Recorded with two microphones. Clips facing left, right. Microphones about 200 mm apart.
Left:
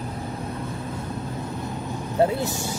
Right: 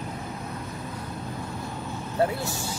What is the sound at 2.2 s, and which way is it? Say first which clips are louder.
Vehicle: left 4 dB; 20° left (ahead or behind).